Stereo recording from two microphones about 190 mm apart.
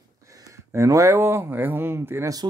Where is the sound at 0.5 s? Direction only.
15° right (ahead or behind).